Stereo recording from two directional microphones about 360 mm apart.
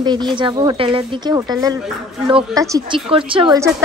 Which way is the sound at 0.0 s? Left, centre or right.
Centre.